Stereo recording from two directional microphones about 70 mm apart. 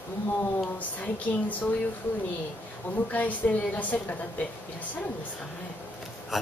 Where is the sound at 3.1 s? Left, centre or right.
Left.